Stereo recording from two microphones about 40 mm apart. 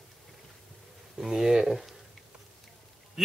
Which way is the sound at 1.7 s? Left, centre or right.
Centre.